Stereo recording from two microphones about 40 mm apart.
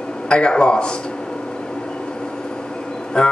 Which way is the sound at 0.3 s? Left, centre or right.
Left.